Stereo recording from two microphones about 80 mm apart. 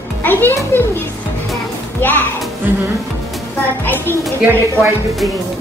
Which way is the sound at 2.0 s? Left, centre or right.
Left.